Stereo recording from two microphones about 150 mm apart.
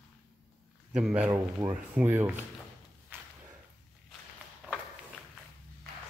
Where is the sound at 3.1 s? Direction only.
15° right (ahead or behind).